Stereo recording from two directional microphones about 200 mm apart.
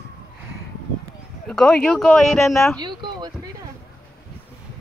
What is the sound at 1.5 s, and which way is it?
Speech, 5° left (ahead or behind).